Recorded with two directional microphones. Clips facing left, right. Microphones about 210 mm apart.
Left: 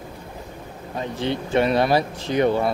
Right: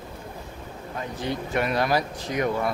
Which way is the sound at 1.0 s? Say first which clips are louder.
Left 5 dB; 25° left (ahead or behind).